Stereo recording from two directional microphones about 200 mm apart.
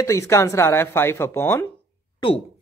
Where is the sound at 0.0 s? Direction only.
15° left (ahead or behind).